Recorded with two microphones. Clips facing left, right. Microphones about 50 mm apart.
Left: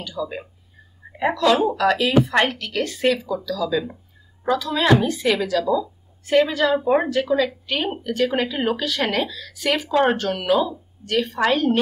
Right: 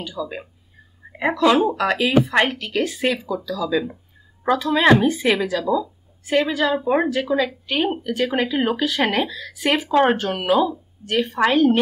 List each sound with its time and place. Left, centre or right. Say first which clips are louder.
0.0 s speech: even; centre
1.3 s speech: right 2 dB; centre